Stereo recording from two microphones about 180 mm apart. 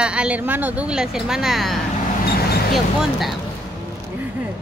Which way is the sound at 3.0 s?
Centre (ahead or behind).